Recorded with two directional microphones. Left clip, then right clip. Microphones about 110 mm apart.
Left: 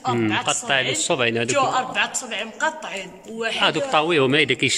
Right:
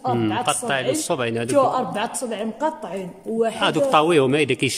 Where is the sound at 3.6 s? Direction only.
15° right (ahead or behind).